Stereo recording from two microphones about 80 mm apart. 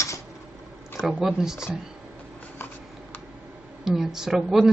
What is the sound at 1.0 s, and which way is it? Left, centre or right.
Speech, centre.